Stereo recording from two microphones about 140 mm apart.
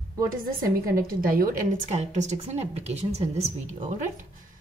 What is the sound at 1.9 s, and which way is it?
A woman's voice, 55° right (ahead or behind).